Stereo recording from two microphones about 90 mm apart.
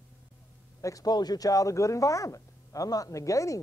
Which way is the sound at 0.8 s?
40° left (ahead or behind).